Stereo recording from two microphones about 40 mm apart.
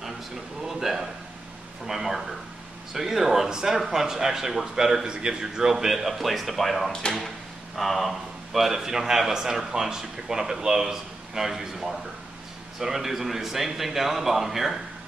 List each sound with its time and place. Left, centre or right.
0.7 s a sound: centre
1.9 s a man's voice: centre
6.9 s speech: left
7.7 s a man's voice: centre